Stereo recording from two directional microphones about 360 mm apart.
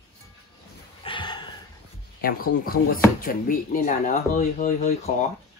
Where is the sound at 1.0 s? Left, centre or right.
Centre.